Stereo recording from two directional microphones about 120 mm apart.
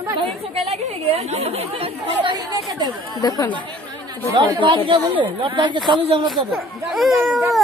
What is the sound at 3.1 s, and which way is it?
Speech, 30° left (ahead or behind).